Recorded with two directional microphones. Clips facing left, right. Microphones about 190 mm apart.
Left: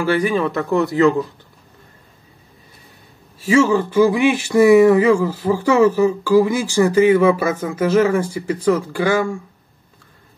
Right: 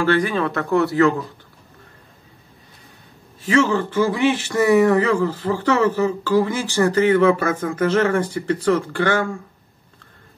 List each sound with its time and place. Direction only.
0.1 s speech: 15° left (ahead or behind)
3.4 s speech: 10° left (ahead or behind)